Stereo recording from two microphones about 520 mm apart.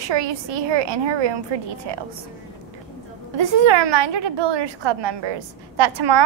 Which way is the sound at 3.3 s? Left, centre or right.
Right.